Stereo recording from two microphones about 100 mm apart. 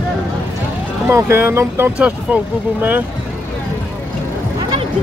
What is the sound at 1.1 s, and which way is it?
Speech, 25° right (ahead or behind).